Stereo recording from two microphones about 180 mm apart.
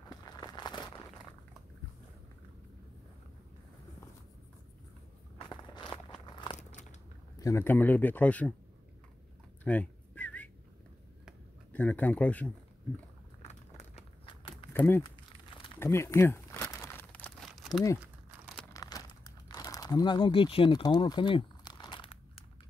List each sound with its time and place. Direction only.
0.1 s a sound: 20° left (ahead or behind)
5.4 s walk: 25° left (ahead or behind)
6.5 s biting: 40° left (ahead or behind)
7.3 s speech: 15° left (ahead or behind)
9.7 s a sound: 10° left (ahead or behind)
11.7 s speech: 10° left (ahead or behind)
13.4 s a sound: 40° left (ahead or behind)
14.7 s speech: 10° left (ahead or behind)
15.0 s crumpling: 30° left (ahead or behind)
15.8 s crumpling: 15° left (ahead or behind); by 17.8 s centre (ahead or behind)
18.7 s crumpling: 20° left (ahead or behind)